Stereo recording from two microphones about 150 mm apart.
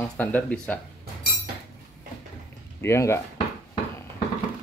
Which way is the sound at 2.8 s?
20° left (ahead or behind).